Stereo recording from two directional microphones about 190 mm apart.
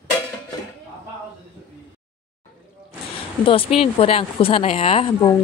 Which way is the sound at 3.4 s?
30° left (ahead or behind).